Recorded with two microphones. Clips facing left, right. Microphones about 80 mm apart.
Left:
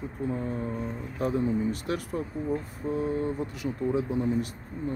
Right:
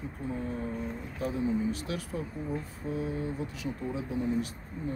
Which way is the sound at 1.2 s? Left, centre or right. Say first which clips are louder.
Left 3 dB; left.